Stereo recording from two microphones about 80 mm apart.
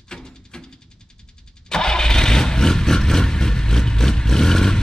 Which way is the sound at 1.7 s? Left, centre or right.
Centre.